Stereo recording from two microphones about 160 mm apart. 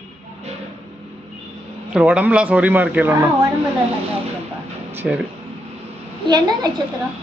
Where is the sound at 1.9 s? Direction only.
10° right (ahead or behind).